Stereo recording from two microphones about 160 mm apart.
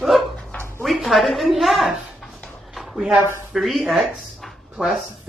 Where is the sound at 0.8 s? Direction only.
Centre (ahead or behind).